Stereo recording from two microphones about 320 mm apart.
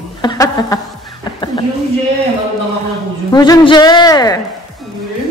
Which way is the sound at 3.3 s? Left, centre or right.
Centre.